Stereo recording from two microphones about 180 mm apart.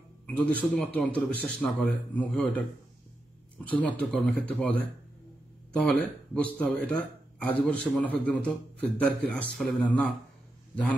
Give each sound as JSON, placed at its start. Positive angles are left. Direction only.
{"t": 0.4, "sound": "a man's voice", "side_deg": 5}
{"t": 3.6, "sound": "a man's voice", "side_deg": 5}